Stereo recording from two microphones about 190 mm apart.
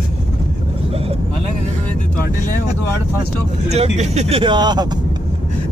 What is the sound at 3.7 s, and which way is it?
Speech, 35° right (ahead or behind).